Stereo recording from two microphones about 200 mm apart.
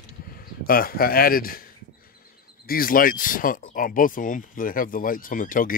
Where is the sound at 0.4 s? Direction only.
45° left (ahead or behind).